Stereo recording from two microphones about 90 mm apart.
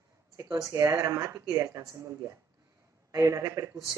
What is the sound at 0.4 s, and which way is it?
Speech, 35° right (ahead or behind).